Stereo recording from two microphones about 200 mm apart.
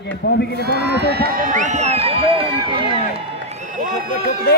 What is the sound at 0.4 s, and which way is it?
Speech, 55° left (ahead or behind).